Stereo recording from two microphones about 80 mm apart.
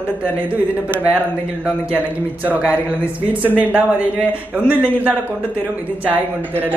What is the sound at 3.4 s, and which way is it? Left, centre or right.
Speech, centre.